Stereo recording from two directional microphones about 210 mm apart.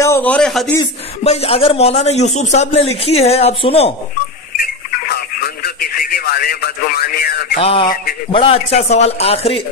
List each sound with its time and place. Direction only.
0.0 s a man's voice: 10° left (ahead or behind)
1.2 s a man's voice: 30° left (ahead or behind)
4.6 s radio: 45° left (ahead or behind)
7.6 s a man's voice: 25° left (ahead or behind)